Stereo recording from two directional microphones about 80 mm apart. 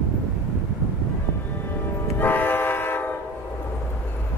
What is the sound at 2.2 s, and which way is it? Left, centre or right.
Train, left.